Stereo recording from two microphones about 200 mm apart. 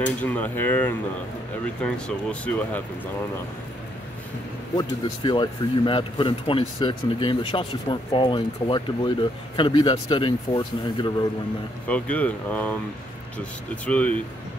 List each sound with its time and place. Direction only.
0.0 s speech: 10° left (ahead or behind)
4.7 s speech: 20° left (ahead or behind)
11.9 s speech: 5° left (ahead or behind)